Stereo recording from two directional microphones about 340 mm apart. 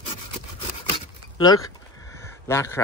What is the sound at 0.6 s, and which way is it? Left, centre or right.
Rub, centre.